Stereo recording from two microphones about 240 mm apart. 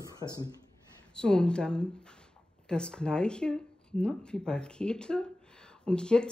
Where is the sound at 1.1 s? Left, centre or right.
Centre.